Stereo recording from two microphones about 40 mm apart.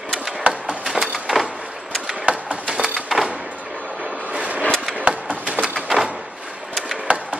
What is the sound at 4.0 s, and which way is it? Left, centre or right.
Train, right.